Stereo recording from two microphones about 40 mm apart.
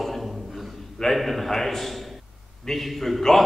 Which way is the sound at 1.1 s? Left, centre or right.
Centre.